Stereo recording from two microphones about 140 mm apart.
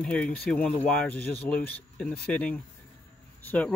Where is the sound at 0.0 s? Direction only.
5° left (ahead or behind).